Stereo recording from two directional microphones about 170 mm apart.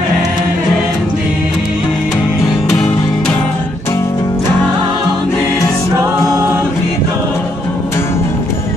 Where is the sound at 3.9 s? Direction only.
20° left (ahead or behind).